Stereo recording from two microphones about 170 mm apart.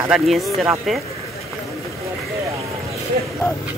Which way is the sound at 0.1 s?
Centre (ahead or behind).